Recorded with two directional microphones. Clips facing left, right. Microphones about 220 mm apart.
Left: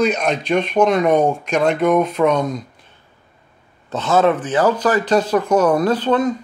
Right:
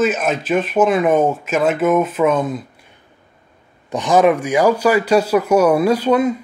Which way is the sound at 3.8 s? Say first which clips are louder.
Right 2 dB; 15° right (ahead or behind).